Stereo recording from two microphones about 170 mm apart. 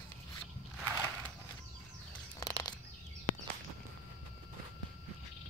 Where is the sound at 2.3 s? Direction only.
20° left (ahead or behind).